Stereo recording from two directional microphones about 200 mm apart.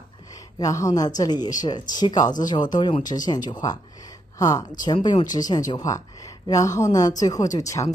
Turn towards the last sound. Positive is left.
turn(degrees=15)  # may be behind; listen again after turning